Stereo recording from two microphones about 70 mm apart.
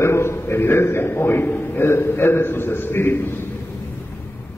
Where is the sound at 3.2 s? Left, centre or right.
Left.